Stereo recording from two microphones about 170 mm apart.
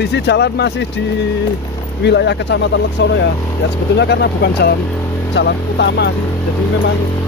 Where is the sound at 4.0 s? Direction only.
80° left.